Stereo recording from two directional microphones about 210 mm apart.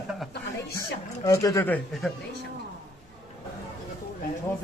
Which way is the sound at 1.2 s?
15° left (ahead or behind).